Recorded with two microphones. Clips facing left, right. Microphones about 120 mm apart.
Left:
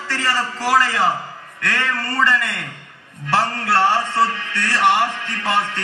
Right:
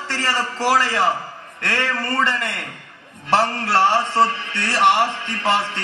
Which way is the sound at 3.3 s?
20° right (ahead or behind).